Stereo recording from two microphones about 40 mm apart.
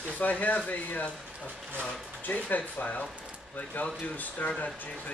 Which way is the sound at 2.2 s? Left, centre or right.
Left.